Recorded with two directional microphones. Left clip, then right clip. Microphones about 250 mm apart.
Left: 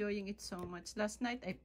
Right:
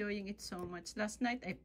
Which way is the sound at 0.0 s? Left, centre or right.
Centre.